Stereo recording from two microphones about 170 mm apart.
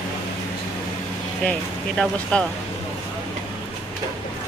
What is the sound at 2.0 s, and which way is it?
Speech, 5° left (ahead or behind).